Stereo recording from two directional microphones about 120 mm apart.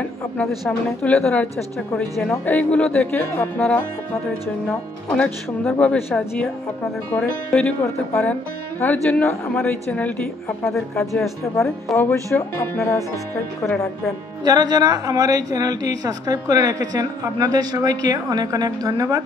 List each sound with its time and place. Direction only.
0.4 s speech: 10° left (ahead or behind)
5.1 s a woman's voice: 10° left (ahead or behind)
12.4 s speech: 20° left (ahead or behind)
14.4 s a woman's voice: 35° right (ahead or behind)